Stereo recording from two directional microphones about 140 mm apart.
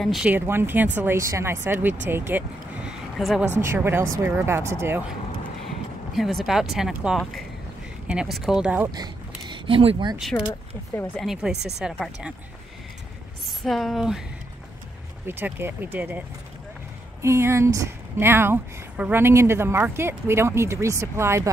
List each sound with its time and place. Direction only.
0.0 s speech: centre (ahead or behind)
0.3 s speech: 15° right (ahead or behind)
2.9 s a sound: 5° right (ahead or behind)
3.6 s speech: 15° right (ahead or behind)
6.1 s speech: centre (ahead or behind)
8.9 s a sound: 30° right (ahead or behind)
11.1 s speech: 5° right (ahead or behind)
13.7 s speech: centre (ahead or behind)
15.2 s speech: 15° right (ahead or behind)